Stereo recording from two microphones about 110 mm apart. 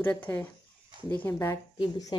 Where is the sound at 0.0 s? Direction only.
15° left (ahead or behind).